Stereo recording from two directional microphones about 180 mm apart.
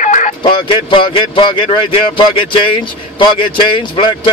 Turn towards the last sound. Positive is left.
turn(degrees=25)  # may be behind; listen again after turning